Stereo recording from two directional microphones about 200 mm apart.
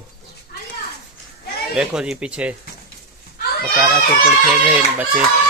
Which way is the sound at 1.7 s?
5° right (ahead or behind).